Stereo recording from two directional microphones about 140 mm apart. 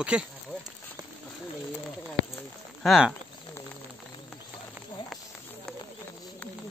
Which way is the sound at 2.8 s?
5° right (ahead or behind).